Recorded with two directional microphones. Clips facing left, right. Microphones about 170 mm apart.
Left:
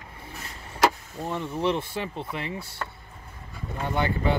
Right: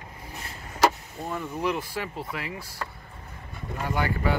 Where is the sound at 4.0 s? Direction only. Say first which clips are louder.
Left 2 dB; 25° left (ahead or behind).